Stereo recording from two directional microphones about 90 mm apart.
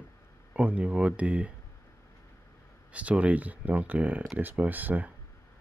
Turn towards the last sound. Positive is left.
turn(degrees=-20)  # may be behind; listen again after turning